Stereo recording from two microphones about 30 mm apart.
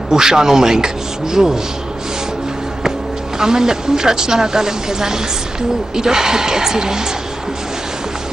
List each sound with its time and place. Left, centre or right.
0.1 s speech: centre
3.3 s speech: right